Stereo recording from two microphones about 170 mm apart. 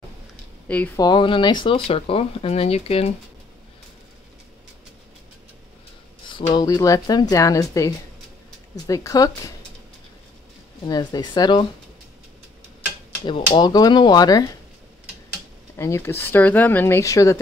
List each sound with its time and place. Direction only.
0.9 s speech: 25° left (ahead or behind)
6.2 s speech: 25° left (ahead or behind)
10.9 s speech: 25° left (ahead or behind)
13.6 s speech: 25° left (ahead or behind)
15.7 s speech: 15° left (ahead or behind)